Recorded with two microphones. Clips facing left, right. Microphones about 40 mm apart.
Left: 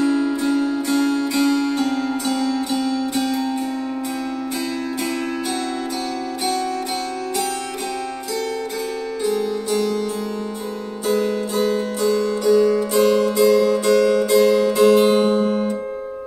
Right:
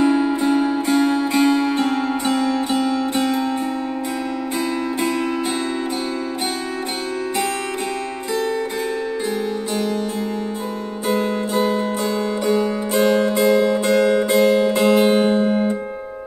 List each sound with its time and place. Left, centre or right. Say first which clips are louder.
0.0 s music: right 2 dB; right
9.2 s music: left 2 dB; right
11.1 s zither: even; right
15.0 s music: even; centre